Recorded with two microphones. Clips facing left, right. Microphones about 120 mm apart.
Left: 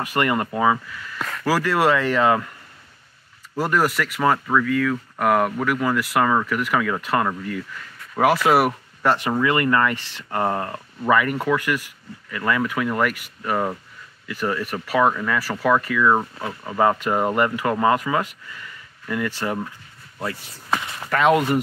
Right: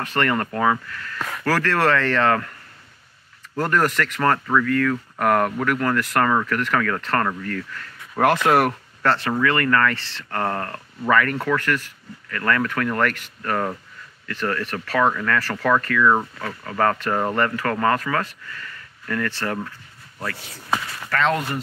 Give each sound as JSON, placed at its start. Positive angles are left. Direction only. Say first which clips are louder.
{"t": 0.0, "sound": "speech", "louder": "left 1 dB", "side_deg": 10}
{"t": 3.5, "sound": "speech", "louder": "even", "side_deg": 5}
{"t": 20.8, "sound": "a sound", "louder": "left 2 dB", "side_deg": 25}
{"t": 21.2, "sound": "speech", "louder": "left 5 dB", "side_deg": 10}